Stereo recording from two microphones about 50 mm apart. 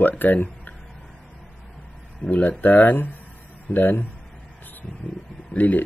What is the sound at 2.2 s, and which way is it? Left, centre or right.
Speech, left.